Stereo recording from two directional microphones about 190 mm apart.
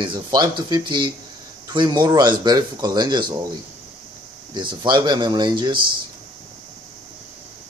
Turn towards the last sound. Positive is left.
turn(degrees=-25)  # may be behind; listen again after turning